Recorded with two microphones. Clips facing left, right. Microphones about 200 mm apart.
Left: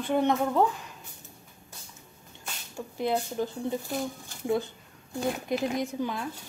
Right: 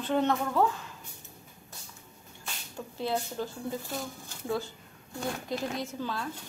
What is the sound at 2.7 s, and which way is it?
A woman's voice, 15° left (ahead or behind).